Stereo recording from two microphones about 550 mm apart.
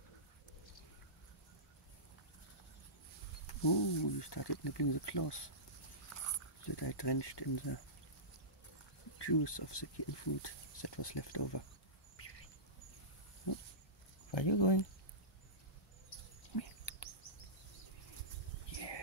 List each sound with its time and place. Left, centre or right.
3.4 s speech: left
6.6 s speech: left
9.2 s speech: left
14.3 s speech: left
18.7 s a sound: left